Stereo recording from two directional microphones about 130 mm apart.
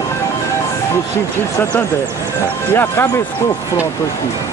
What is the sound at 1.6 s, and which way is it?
Speech, 20° left (ahead or behind).